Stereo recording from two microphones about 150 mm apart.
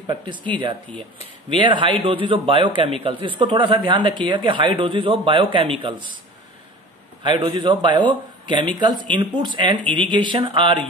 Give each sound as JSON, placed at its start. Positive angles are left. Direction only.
{"t": 1.6, "sound": "a man's voice", "side_deg": -35}
{"t": 7.3, "sound": "a man's voice", "side_deg": -35}